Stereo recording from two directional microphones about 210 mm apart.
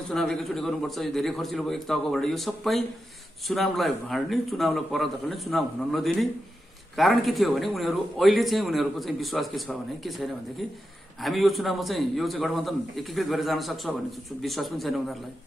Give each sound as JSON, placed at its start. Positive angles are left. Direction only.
{"t": 0.1, "sound": "a man's voice", "side_deg": 0}